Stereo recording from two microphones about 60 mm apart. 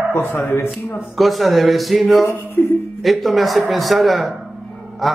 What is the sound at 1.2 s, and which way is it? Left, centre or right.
Speech, centre.